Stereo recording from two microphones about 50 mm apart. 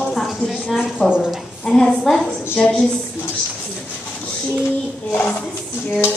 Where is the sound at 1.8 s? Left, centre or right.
Centre.